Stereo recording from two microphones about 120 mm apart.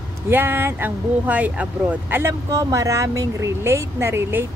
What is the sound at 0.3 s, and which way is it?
Speech, 20° right (ahead or behind).